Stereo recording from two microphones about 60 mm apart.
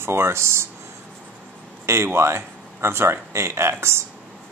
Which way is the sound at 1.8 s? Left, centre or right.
Right.